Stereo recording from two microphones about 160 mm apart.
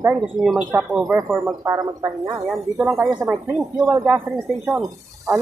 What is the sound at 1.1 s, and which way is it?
A woman's voice, 15° right (ahead or behind).